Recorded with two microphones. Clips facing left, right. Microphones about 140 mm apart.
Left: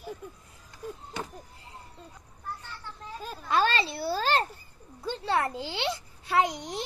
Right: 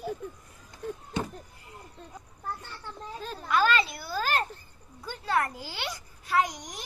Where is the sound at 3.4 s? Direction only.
30° left (ahead or behind).